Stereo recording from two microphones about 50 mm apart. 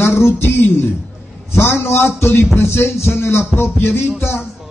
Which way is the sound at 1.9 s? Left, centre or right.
Left.